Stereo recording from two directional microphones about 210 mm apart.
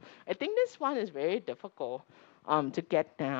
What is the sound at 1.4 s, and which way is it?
Speech, 30° left (ahead or behind).